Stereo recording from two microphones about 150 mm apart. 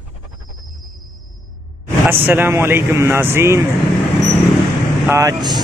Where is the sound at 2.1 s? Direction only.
15° right (ahead or behind).